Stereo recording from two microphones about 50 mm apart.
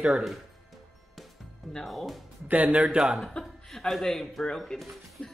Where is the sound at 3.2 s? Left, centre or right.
Centre.